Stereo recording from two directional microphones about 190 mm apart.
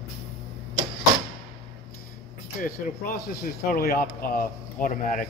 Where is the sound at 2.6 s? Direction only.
50° left (ahead or behind).